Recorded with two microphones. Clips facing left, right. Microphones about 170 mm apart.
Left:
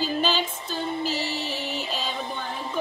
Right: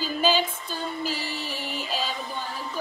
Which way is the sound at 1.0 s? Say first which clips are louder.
Left 3 dB; 45° right (ahead or behind).